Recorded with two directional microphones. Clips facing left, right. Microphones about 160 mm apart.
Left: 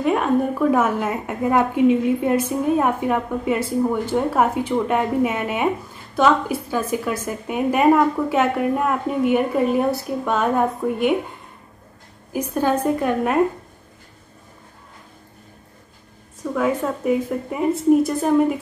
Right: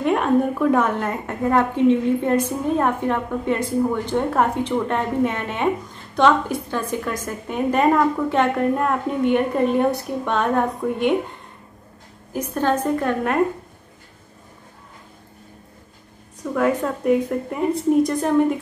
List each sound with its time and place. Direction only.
0.0 s a woman's voice: centre (ahead or behind)
12.3 s a woman's voice: 10° left (ahead or behind)
16.5 s a woman's voice: centre (ahead or behind)